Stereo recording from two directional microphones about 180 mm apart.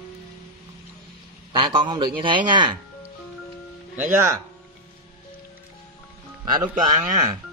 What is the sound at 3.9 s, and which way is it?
Speech, 10° right (ahead or behind).